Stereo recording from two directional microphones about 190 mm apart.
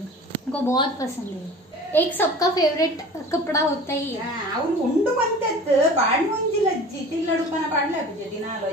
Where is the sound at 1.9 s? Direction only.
15° left (ahead or behind).